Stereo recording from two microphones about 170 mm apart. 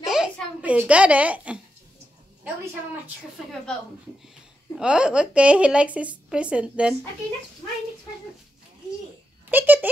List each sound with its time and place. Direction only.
0.0 s a sound: 5° right (ahead or behind)
4.7 s speech: 5° right (ahead or behind)
9.5 s speech: 10° right (ahead or behind)